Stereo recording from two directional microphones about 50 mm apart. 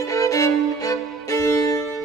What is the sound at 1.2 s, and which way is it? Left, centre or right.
Music, left.